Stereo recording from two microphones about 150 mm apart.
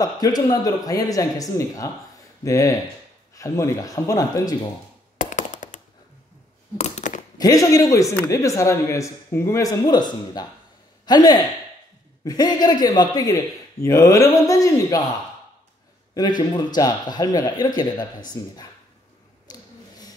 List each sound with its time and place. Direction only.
0.0 s speech: 25° left (ahead or behind)
5.1 s tap: 60° left (ahead or behind)
6.8 s a sound: 55° left (ahead or behind)
7.3 s speech: 25° left (ahead or behind)
16.2 s speech: 30° left (ahead or behind)
19.5 s a sound: 25° left (ahead or behind)